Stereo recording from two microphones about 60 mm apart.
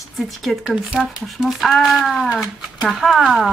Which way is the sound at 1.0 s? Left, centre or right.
Centre.